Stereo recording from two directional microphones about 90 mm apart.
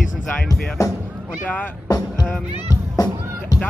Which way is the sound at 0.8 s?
40° left (ahead or behind).